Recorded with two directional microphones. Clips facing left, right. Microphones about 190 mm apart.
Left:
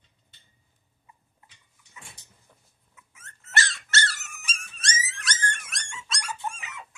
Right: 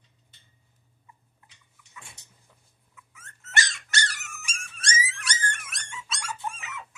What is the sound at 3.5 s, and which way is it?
Dog, 15° right (ahead or behind).